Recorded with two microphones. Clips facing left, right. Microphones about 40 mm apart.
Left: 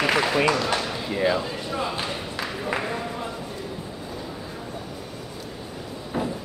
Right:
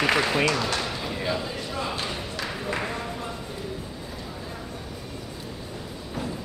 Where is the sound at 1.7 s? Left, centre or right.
Centre.